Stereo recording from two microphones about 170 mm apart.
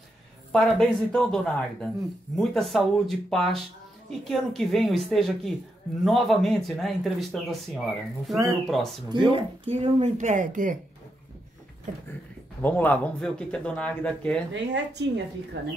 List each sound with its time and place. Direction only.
0.5 s speech: 5° left (ahead or behind)
9.3 s speech: 35° right (ahead or behind)
12.6 s speech: 10° left (ahead or behind)
14.5 s a woman's voice: 90° right